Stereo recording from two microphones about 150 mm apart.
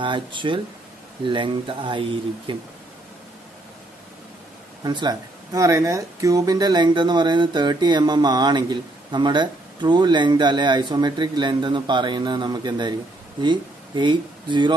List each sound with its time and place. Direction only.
0.0 s speech: 35° right (ahead or behind)
4.8 s speech: 30° right (ahead or behind)